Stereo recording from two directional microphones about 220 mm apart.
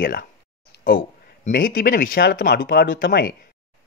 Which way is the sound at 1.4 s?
40° left (ahead or behind).